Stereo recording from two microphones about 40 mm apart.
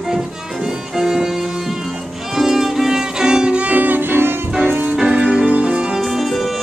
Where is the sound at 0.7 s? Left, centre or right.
Centre; by 3.7 s right.